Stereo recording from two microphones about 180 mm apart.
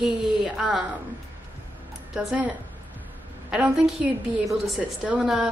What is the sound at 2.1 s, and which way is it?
Speech, 10° right (ahead or behind).